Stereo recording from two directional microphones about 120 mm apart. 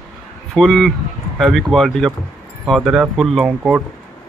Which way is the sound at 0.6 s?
5° left (ahead or behind).